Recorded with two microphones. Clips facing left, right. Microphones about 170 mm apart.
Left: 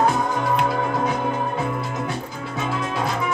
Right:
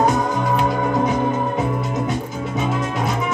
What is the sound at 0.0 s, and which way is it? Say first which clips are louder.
Music: right 2 dB; 20° right (ahead or behind).